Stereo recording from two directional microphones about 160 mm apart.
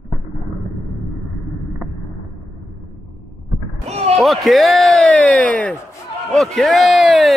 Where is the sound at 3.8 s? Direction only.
40° right (ahead or behind).